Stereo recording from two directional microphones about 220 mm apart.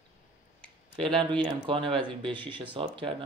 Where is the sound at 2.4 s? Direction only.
20° right (ahead or behind).